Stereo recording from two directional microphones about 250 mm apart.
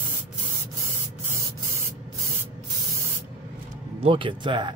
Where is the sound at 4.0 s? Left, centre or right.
Right.